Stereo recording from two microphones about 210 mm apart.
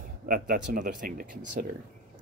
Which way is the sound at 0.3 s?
40° right (ahead or behind).